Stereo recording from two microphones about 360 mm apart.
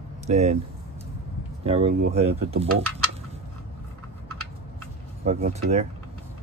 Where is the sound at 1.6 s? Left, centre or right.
Centre.